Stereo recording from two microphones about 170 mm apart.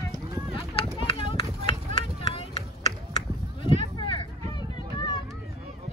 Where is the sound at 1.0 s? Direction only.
35° left (ahead or behind).